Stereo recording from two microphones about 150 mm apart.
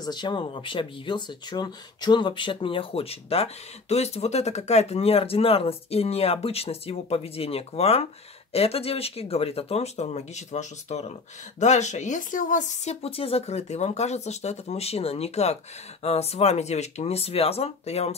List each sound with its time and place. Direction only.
0.0 s speech: 30° left (ahead or behind)